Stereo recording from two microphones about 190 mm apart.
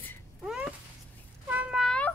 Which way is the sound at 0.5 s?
5° right (ahead or behind).